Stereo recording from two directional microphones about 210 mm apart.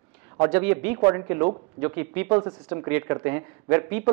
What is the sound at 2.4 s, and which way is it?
A woman's voice, 20° right (ahead or behind).